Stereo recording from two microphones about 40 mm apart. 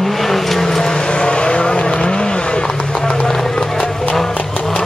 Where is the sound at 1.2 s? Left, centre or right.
Left.